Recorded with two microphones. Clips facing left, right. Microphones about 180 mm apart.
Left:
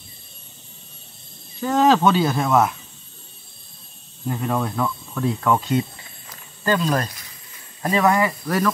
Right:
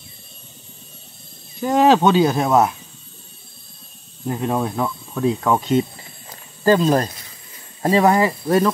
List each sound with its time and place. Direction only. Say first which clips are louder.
1.6 s speech: right 2 dB; 15° right (ahead or behind)
4.3 s speech: right 2 dB; 20° right (ahead or behind)